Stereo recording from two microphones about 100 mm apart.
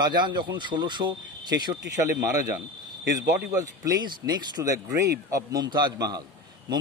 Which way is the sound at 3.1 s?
35° right (ahead or behind).